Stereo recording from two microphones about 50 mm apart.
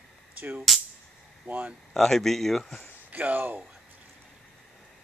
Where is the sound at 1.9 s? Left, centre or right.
Centre.